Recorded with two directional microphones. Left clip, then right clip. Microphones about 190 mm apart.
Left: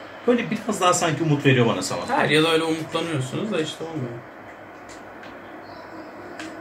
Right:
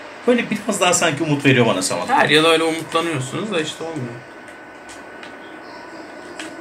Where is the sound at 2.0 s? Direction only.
5° left (ahead or behind).